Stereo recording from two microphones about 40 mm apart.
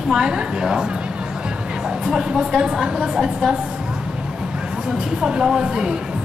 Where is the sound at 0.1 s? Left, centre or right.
Centre.